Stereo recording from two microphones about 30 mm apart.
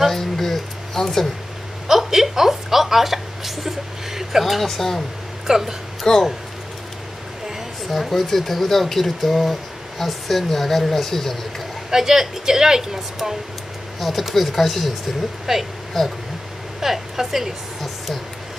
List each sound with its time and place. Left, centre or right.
0.1 s a sound: centre
1.9 s a woman's voice: centre
4.6 s speech: centre
5.5 s a woman's voice: centre
6.0 s speech: centre
7.9 s speech: centre
11.9 s a woman's voice: centre
13.9 s speech: centre
15.5 s a woman's voice: centre
16.0 s speech: centre
16.8 s a woman's voice: centre